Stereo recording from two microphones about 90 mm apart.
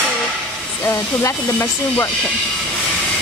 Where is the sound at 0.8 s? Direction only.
30° left (ahead or behind).